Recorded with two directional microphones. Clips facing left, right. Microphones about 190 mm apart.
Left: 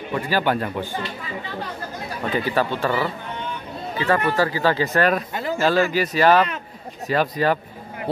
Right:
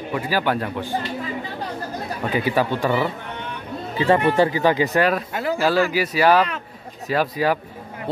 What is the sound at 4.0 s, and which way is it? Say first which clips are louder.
Speech: right 3 dB; 25° right (ahead or behind).